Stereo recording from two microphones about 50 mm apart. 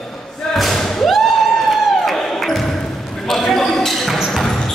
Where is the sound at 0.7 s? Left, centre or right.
Centre.